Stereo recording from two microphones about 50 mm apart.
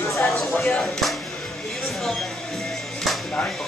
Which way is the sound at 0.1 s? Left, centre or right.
Centre.